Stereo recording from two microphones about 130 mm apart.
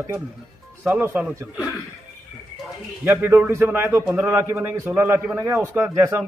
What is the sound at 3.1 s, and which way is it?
A man's voice, 15° right (ahead or behind).